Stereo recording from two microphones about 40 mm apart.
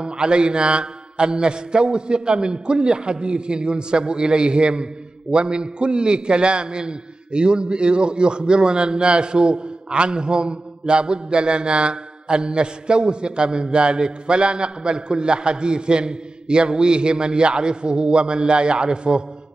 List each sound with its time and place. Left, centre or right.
0.0 s a man's voice: right